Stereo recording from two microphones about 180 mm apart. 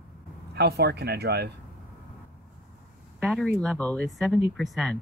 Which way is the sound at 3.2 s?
Centre (ahead or behind).